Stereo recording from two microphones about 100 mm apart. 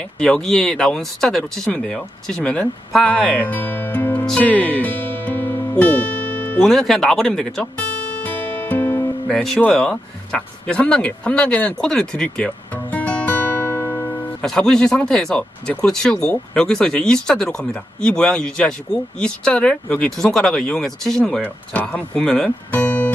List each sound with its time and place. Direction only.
0.2 s speech: 5° left (ahead or behind)
4.3 s music: 10° left (ahead or behind)
6.6 s speech: 5° left (ahead or behind)
8.2 s music: 15° left (ahead or behind)
9.3 s speech: 5° left (ahead or behind); by 14.0 s 25° left (ahead or behind)
14.4 s speech: 5° left (ahead or behind)
22.7 s music: 15° left (ahead or behind)